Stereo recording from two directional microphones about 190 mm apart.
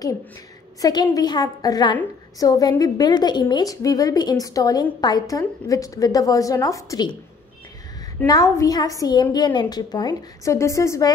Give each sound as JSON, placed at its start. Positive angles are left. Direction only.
{"t": 0.7, "sound": "a woman's voice", "side_deg": 20}
{"t": 8.3, "sound": "a woman's voice", "side_deg": 20}